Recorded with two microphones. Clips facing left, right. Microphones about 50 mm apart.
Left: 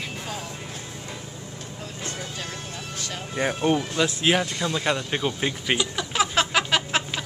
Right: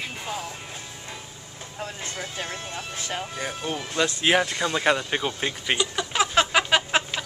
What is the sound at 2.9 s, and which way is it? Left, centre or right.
Speech, right.